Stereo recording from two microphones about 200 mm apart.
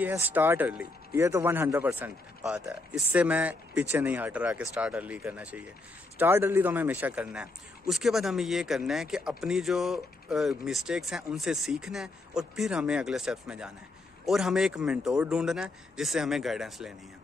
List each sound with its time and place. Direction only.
0.0 s a man's voice: 10° right (ahead or behind)